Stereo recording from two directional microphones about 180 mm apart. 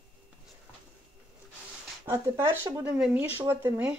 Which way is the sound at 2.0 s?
15° right (ahead or behind).